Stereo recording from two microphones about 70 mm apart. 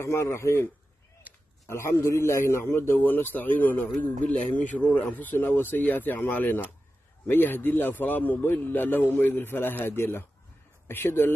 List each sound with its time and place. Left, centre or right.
0.0 s a man's voice: left
1.3 s a sound: right
1.7 s a man's voice: left
2.9 s a man's voice: left